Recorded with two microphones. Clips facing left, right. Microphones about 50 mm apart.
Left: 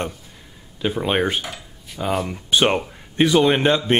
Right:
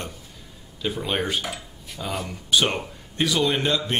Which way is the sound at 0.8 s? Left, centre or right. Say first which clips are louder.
Left 5 dB; left.